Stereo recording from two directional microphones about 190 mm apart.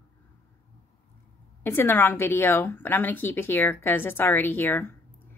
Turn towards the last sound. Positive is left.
turn(degrees=10)  # may be behind; listen again after turning